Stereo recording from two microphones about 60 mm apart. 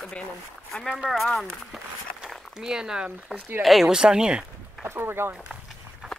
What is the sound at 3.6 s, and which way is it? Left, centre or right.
Speech, centre.